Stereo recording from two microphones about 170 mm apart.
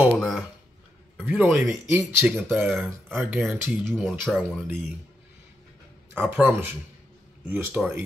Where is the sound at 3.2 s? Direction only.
15° right (ahead or behind).